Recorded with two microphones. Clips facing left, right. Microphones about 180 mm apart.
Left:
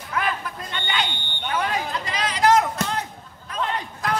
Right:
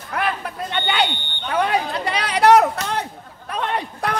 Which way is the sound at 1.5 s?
65° right (ahead or behind).